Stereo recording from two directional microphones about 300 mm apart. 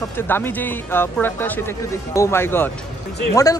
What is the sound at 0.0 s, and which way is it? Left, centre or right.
Speech, centre.